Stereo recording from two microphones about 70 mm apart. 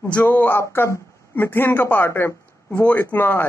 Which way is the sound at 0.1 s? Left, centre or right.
Left.